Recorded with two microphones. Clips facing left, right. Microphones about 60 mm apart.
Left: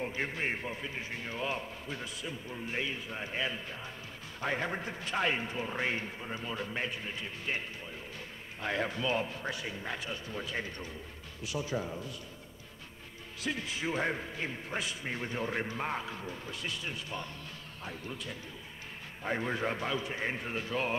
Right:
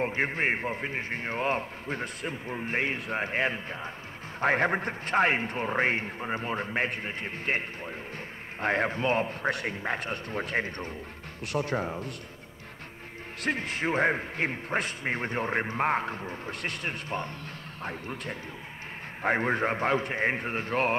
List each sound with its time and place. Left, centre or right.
0.0 s a man's voice: right
9.5 s a man's voice: right
13.4 s a man's voice: right